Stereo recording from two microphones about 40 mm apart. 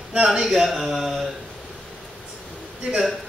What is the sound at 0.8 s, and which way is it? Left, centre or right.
Mantra, centre.